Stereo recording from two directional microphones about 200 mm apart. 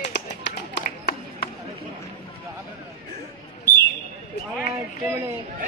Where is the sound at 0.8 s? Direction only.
50° left (ahead or behind).